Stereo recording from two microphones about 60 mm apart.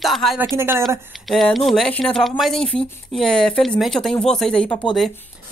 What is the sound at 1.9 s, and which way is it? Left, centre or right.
Speech, centre.